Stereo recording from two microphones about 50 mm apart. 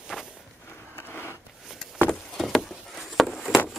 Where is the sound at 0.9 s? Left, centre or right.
Left.